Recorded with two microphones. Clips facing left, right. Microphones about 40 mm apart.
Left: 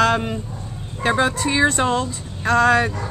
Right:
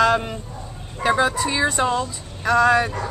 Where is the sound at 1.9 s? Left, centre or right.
Left.